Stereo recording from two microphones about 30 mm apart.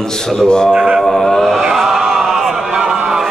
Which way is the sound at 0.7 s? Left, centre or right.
Right.